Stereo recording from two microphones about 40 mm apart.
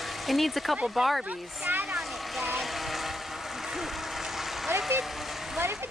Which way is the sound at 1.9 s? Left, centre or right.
Centre.